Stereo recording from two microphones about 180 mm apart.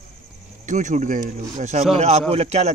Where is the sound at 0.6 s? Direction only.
45° right (ahead or behind).